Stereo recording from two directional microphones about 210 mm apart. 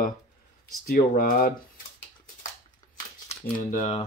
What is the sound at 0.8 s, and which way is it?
Speech, 45° left (ahead or behind).